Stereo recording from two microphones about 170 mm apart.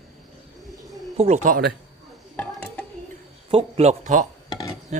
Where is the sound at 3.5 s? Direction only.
35° right (ahead or behind).